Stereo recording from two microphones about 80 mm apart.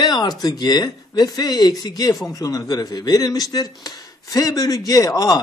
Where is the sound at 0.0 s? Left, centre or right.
Left.